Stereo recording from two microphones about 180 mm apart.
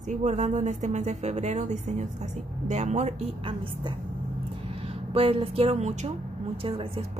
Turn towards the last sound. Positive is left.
turn(degrees=-30)  # may be behind; listen again after turning